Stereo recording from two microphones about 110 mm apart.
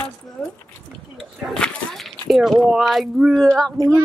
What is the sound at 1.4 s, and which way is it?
Speech, 5° left (ahead or behind).